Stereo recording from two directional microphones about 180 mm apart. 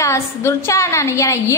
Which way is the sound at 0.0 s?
15° left (ahead or behind).